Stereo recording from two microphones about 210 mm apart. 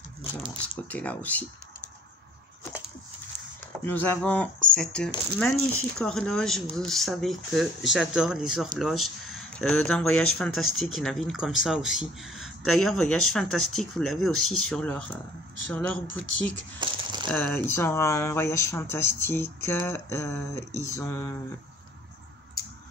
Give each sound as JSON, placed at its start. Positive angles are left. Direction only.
{"t": 0.8, "sound": "speech", "side_deg": 5}
{"t": 3.8, "sound": "speech", "side_deg": 10}
{"t": 16.7, "sound": "a sound", "side_deg": -20}
{"t": 17.3, "sound": "speech", "side_deg": 10}